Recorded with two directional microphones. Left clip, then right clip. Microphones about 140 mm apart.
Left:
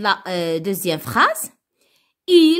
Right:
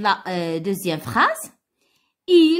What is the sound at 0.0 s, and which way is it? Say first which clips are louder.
A woman's voice: left 1 dB; 25° left (ahead or behind).